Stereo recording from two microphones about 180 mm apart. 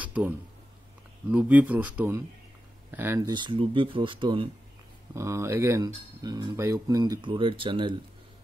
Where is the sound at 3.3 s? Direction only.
25° right (ahead or behind).